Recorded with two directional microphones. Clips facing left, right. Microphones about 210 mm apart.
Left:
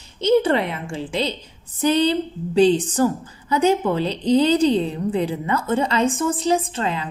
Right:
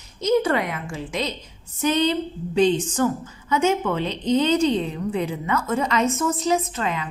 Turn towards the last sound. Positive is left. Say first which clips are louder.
# left 2 dB
turn(degrees=30)  # may be behind; listen again after turning